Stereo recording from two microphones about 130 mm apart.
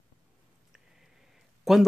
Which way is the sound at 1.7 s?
Centre (ahead or behind).